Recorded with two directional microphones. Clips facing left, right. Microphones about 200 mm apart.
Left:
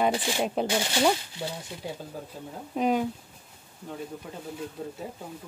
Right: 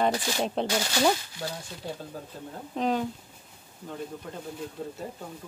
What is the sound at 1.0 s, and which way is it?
A woman's voice, 10° left (ahead or behind).